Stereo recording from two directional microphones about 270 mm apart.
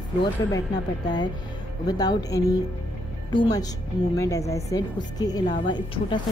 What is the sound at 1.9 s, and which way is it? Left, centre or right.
A woman's voice, centre.